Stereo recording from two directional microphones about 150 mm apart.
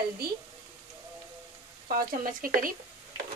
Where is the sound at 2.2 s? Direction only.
70° right (ahead or behind).